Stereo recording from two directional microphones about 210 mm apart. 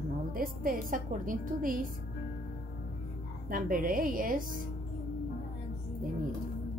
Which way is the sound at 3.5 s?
40° right (ahead or behind).